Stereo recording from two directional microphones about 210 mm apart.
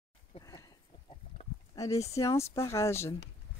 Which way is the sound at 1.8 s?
15° left (ahead or behind).